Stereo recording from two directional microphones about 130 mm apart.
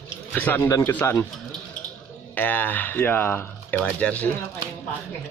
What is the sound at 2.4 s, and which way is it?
Speech, 15° left (ahead or behind).